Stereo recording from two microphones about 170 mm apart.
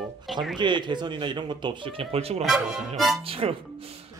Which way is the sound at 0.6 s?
25° right (ahead or behind).